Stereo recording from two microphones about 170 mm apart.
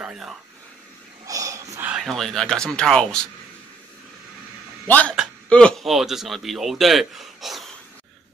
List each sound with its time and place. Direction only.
0.0 s a sound: 5° right (ahead or behind)
1.2 s wheeze: 20° right (ahead or behind)
1.9 s speech: centre (ahead or behind)
4.8 s a man's voice: 10° left (ahead or behind)